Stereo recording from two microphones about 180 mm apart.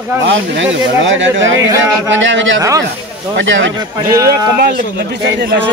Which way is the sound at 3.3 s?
90° right.